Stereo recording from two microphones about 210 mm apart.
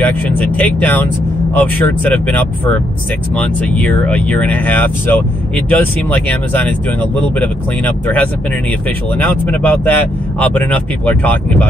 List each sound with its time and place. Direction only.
0.0 s speech: 10° left (ahead or behind)